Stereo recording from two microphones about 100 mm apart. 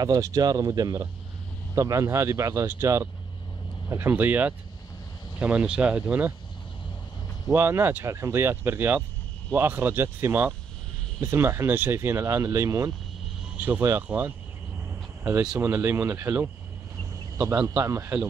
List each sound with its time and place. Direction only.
0.0 s speech: 40° right (ahead or behind); by 6.3 s 15° right (ahead or behind)
7.4 s speech: 25° right (ahead or behind)
13.6 s speech: 15° right (ahead or behind)
15.6 s speech: 25° right (ahead or behind)
17.5 s speech: 30° right (ahead or behind)